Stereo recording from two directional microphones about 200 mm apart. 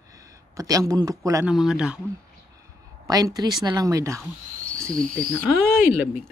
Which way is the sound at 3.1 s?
15° right (ahead or behind).